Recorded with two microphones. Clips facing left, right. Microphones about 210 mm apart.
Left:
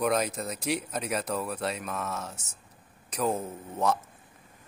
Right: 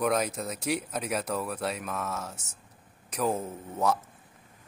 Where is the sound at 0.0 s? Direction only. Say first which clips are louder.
Even; centre (ahead or behind).